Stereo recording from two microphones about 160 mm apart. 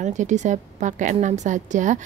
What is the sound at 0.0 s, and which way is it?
A woman's voice, 50° right (ahead or behind).